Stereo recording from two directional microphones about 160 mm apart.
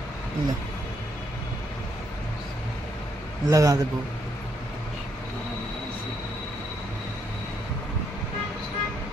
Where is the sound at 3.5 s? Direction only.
20° right (ahead or behind).